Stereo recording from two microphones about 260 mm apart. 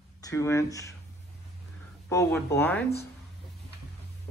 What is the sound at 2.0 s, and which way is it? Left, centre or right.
Speech, centre.